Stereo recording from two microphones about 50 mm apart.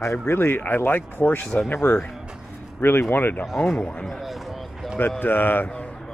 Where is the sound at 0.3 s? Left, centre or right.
Left.